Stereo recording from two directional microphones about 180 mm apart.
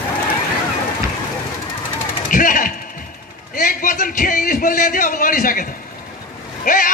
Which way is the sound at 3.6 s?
50° left (ahead or behind).